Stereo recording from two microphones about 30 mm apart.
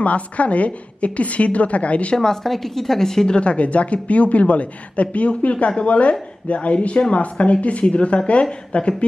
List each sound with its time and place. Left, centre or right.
0.0 s a woman's voice: left
2.1 s a woman's voice: centre
2.4 s a woman's voice: centre
3.3 s a woman's voice: left